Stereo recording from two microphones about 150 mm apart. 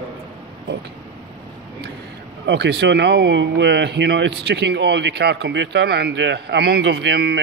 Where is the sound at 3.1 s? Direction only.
90° right.